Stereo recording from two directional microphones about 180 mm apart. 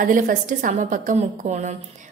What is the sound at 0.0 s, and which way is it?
A woman's voice, 45° right (ahead or behind).